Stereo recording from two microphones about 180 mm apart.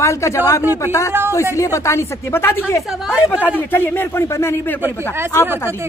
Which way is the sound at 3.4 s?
10° left (ahead or behind).